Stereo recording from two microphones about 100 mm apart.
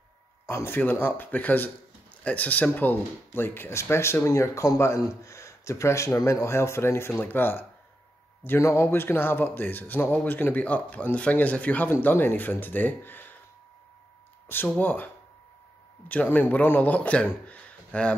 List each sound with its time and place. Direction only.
0.5 s speech: 25° left (ahead or behind)
14.8 s speech: 20° left (ahead or behind)
16.1 s speech: 15° left (ahead or behind)